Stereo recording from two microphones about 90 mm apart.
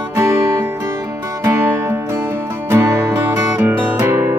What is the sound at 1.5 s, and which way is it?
Music, 25° right (ahead or behind).